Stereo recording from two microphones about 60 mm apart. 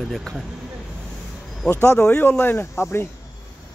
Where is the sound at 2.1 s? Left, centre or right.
Left.